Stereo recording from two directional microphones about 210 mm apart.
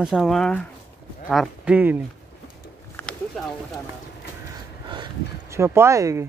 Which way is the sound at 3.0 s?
5° left (ahead or behind).